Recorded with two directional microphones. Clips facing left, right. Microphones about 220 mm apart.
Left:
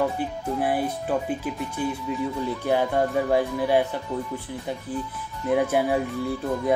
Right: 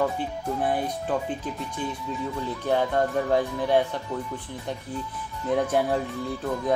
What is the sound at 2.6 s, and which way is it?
Speech, 10° left (ahead or behind).